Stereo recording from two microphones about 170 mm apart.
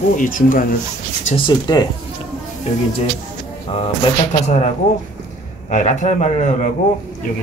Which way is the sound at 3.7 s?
30° left (ahead or behind).